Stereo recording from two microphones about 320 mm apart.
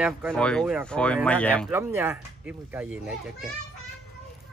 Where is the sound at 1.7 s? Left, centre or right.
Centre.